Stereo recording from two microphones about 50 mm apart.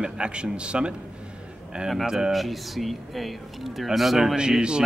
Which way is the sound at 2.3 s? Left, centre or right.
Centre.